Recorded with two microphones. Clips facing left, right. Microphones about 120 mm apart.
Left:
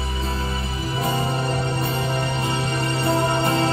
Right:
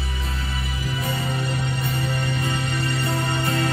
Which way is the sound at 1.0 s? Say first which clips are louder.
Left 4 dB; 40° left (ahead or behind).